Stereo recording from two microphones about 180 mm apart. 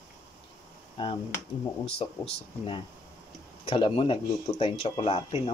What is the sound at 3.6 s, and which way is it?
Speech, 30° left (ahead or behind).